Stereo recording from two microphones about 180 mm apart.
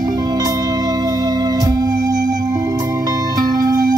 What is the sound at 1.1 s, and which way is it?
Music, 20° right (ahead or behind).